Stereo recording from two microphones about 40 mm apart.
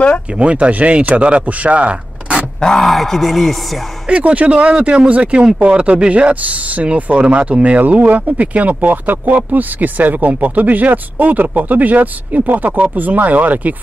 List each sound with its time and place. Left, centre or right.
0.4 s speech: right
2.6 s speech: centre
4.1 s speech: right